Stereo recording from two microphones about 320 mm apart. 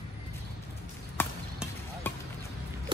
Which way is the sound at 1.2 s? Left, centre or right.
Centre.